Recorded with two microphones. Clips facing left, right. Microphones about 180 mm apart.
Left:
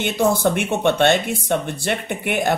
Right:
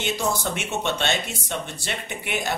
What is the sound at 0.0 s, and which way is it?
Speech, 55° left (ahead or behind).